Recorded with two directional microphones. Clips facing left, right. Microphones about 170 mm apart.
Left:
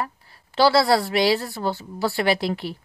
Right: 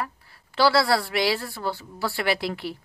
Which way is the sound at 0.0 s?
25° left (ahead or behind).